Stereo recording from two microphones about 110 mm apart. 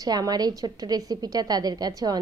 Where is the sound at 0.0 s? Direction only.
35° right (ahead or behind).